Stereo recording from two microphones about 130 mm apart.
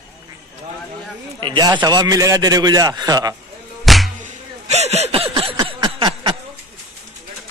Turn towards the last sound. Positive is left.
turn(degrees=-35)  # may be behind; listen again after turning